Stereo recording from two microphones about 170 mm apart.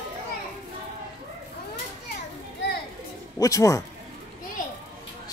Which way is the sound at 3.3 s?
20° left (ahead or behind).